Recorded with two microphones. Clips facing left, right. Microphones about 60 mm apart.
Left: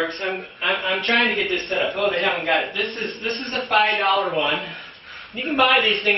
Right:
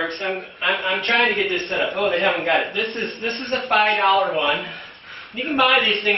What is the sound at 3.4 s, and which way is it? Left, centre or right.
A man's voice, centre.